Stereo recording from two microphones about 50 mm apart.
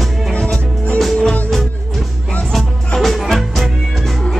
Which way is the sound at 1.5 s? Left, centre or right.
Centre.